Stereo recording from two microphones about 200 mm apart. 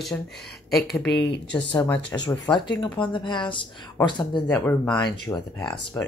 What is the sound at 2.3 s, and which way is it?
Speech, 20° left (ahead or behind).